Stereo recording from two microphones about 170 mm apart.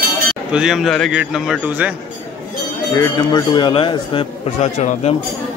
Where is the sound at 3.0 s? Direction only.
25° left (ahead or behind); by 5.1 s 40° left (ahead or behind).